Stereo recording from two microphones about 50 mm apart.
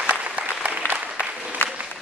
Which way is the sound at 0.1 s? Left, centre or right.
Right.